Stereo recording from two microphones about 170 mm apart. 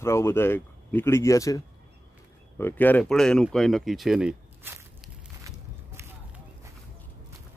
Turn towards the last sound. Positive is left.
turn(degrees=-15)  # may be behind; listen again after turning